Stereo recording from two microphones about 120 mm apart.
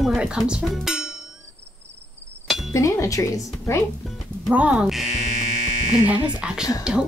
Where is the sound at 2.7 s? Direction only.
25° left (ahead or behind).